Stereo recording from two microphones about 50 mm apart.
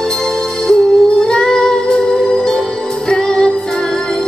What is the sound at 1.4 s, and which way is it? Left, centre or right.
Music, centre.